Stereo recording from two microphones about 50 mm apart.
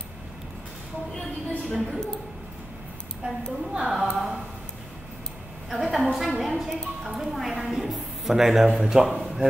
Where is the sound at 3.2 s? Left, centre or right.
Right.